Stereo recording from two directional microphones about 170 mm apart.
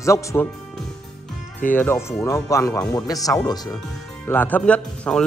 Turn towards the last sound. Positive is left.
turn(degrees=5)  # may be behind; listen again after turning